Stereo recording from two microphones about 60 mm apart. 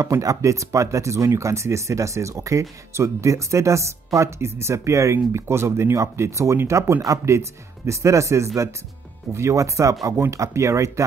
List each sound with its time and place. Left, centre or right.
0.0 s speech: right
7.0 s speech: right
7.3 s speech: right